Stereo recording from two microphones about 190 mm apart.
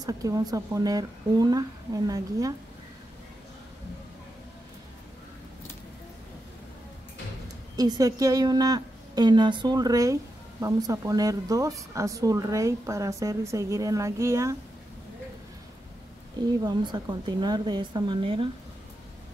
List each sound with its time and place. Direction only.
0.0 s speech: 20° right (ahead or behind)
7.7 s speech: 20° right (ahead or behind)
16.6 s speech: 20° right (ahead or behind)